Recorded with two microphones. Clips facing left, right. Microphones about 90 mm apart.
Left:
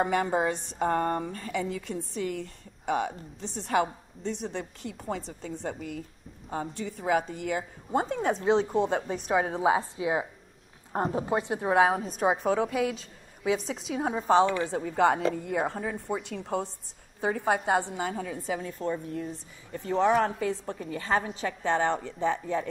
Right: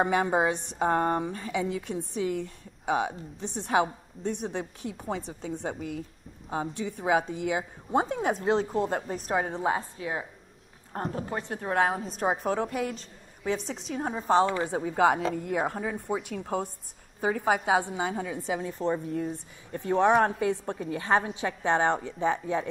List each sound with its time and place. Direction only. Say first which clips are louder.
0.0 s a woman's voice: right 1 dB; 10° right (ahead or behind)
14.6 s a woman's voice: right 1 dB; 15° right (ahead or behind)
18.6 s a woman's voice: right 3 dB; 30° right (ahead or behind)
19.1 s speech: right 4 dB; 40° right (ahead or behind)
20.0 s a woman's voice: right 2 dB; centre (ahead or behind)
21.4 s a woman's voice: right 1 dB; 15° right (ahead or behind)